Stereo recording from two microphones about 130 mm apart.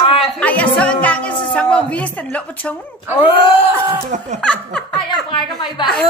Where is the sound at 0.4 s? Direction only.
10° left (ahead or behind).